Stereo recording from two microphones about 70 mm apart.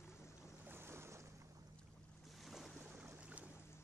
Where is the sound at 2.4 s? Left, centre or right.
Centre.